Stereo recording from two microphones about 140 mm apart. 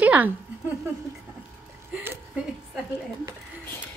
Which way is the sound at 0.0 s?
10° right (ahead or behind).